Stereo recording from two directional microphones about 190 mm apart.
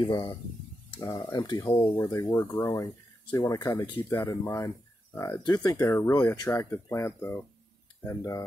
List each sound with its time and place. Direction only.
0.0 s speech: 20° left (ahead or behind)